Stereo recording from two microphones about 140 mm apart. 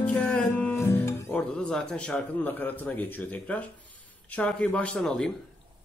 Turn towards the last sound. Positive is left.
turn(degrees=5)  # may be behind; listen again after turning